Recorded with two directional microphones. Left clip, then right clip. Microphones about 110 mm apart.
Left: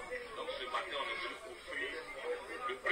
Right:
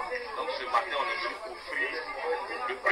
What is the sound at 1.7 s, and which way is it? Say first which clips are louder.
Speech: right 10 dB; 20° left (ahead or behind).